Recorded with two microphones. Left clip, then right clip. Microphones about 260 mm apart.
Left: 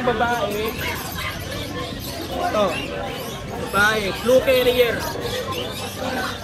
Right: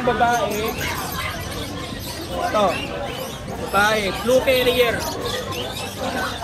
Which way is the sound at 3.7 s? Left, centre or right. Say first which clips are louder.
Right 1 dB; centre.